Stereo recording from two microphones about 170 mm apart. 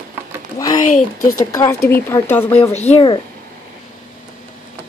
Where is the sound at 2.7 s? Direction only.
40° left (ahead or behind).